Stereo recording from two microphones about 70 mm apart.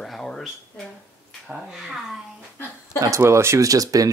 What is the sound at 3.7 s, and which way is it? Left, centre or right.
Speech, right.